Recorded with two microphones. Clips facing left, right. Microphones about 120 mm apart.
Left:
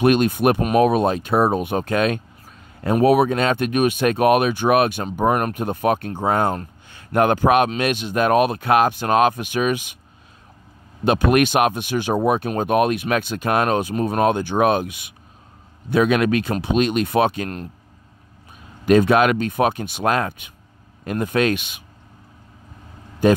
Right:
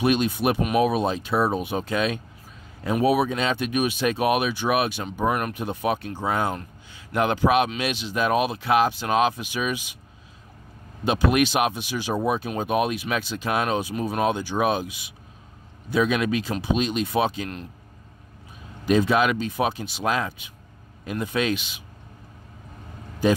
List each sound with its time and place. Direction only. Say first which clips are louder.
0.0 s speech: left 5 dB; 55° left (ahead or behind)
11.1 s speech: left 4 dB; 55° left (ahead or behind)
18.9 s speech: left 5 dB; 60° left (ahead or behind)
23.2 s speech: left 5 dB; 55° left (ahead or behind)